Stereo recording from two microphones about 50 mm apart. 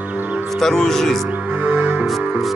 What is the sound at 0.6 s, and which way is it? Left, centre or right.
Speech, centre.